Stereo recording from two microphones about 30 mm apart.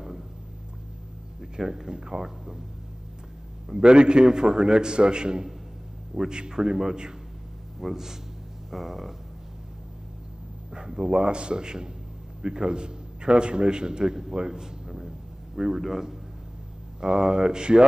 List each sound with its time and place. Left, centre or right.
1.9 s a man's voice: right
3.7 s a man's voice: right; by 9.1 s centre
10.7 s a man's voice: right
14.9 s music: centre
17.0 s a man's voice: right